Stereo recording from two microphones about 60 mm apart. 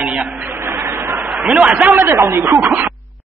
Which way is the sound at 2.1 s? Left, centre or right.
Right.